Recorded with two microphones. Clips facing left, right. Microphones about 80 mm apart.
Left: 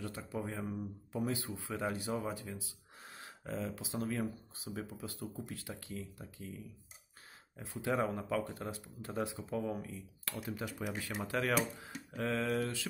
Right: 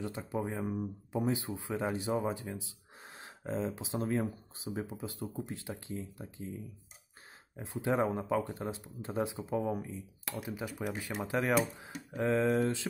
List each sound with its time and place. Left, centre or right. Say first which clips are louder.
0.0 s speech: right 5 dB; right